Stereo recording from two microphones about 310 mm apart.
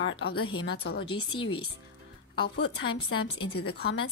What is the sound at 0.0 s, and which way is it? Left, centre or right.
A woman's voice, left.